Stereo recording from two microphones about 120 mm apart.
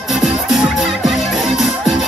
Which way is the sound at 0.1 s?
5° right (ahead or behind).